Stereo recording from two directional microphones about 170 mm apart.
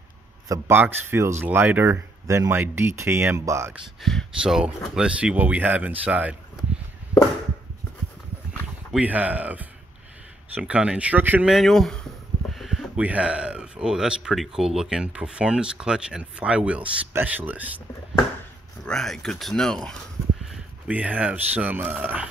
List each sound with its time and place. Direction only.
0.5 s speech: 15° right (ahead or behind)
4.0 s speech: centre (ahead or behind)
8.9 s speech: 10° right (ahead or behind)
18.9 s speech: 5° left (ahead or behind)